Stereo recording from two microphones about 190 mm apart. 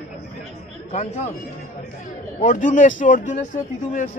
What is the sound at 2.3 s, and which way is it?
Speech, 45° left (ahead or behind).